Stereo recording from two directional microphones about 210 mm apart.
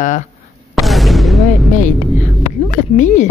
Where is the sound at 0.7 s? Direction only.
Centre (ahead or behind).